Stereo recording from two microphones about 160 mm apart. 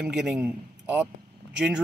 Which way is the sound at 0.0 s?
5° right (ahead or behind).